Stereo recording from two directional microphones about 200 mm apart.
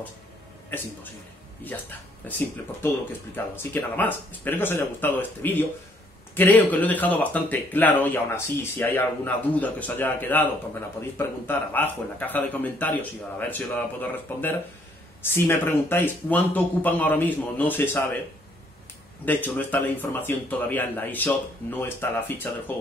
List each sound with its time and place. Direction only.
1.6 s speech: 10° left (ahead or behind)
19.2 s speech: 10° left (ahead or behind)